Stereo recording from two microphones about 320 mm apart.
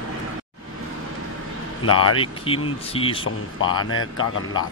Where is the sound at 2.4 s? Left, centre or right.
Centre.